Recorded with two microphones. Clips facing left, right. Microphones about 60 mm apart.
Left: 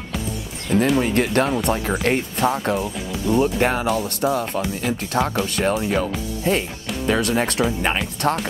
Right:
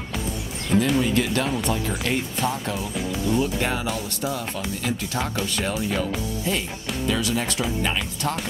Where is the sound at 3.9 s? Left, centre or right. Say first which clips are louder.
Left 7 dB; left.